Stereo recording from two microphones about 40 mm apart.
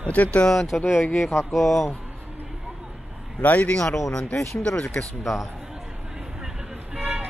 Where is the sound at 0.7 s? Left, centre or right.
Left.